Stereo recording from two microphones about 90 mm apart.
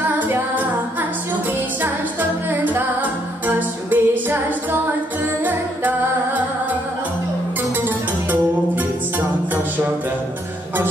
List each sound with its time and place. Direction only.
0.2 s a capella: 20° right (ahead or behind)
2.6 s music: 20° right (ahead or behind)
5.4 s music: 20° right (ahead or behind)